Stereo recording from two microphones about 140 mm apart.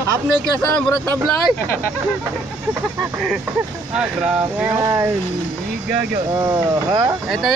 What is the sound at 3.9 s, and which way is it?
Speech, 5° right (ahead or behind).